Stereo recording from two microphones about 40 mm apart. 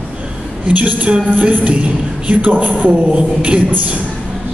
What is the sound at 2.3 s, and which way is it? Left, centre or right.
Speech, right.